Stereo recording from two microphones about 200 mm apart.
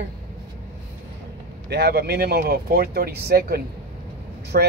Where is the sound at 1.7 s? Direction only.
55° right (ahead or behind).